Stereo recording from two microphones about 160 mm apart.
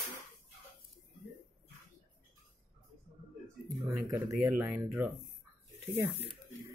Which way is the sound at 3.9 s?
15° right (ahead or behind).